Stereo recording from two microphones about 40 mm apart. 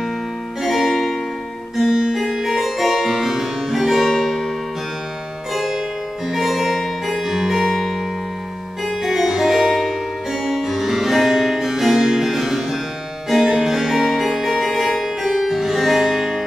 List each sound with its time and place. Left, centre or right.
0.6 s music: centre
1.8 s music: centre
2.1 s music: centre
5.5 s music: centre
7.3 s music: centre
13.3 s harpsichord: centre